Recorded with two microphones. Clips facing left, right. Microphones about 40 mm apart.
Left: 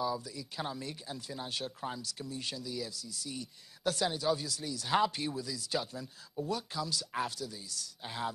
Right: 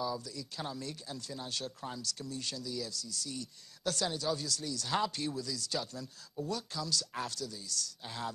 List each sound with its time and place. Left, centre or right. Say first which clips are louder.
0.0 s speech: left 2 dB; centre